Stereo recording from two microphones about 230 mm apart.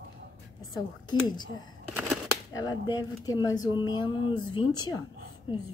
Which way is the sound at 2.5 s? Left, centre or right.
Centre.